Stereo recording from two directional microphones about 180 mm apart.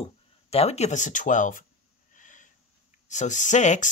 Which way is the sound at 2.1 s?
45° left (ahead or behind).